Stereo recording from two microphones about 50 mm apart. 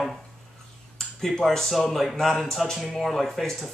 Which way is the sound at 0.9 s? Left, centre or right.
Centre.